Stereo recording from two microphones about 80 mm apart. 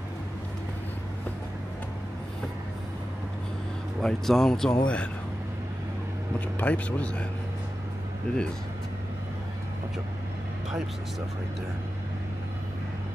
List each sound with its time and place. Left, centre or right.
4.0 s speech: centre
6.6 s speech: centre
8.3 s speech: centre